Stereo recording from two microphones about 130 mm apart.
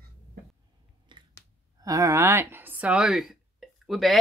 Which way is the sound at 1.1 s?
35° right (ahead or behind).